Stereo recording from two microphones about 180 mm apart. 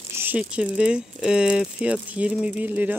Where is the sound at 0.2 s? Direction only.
10° right (ahead or behind).